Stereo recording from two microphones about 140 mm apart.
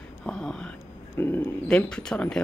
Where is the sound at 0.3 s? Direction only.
5° left (ahead or behind).